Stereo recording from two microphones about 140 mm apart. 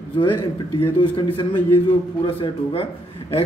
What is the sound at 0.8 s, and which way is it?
A man's voice, 35° left (ahead or behind).